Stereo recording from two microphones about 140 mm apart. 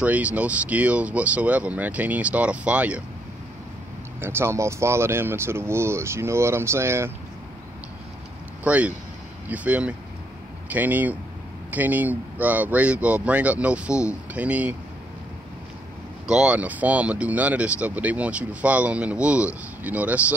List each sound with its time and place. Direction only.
0.0 s speech: 10° right (ahead or behind)
4.2 s speech: 15° right (ahead or behind)
8.6 s speech: 10° right (ahead or behind)
16.3 s speech: 5° right (ahead or behind)